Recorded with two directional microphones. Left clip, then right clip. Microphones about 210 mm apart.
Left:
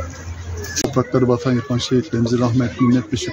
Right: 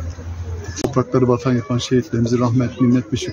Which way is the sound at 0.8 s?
5° right (ahead or behind).